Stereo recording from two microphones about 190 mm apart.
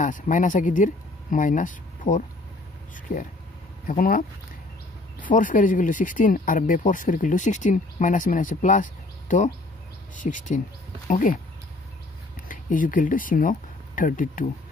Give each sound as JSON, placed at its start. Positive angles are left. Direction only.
{"t": 0.0, "sound": "speech", "side_deg": 40}
{"t": 5.3, "sound": "speech", "side_deg": 45}
{"t": 12.4, "sound": "speech", "side_deg": 45}